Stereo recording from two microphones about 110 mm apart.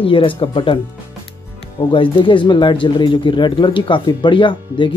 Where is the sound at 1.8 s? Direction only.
50° left (ahead or behind).